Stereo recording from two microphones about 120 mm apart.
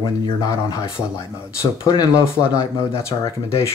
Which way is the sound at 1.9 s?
30° left (ahead or behind).